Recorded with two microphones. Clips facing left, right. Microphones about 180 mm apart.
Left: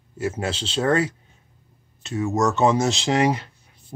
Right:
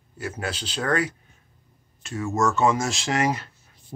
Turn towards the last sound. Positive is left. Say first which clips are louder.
# left 4 dB
turn(degrees=20)  # may be behind; listen again after turning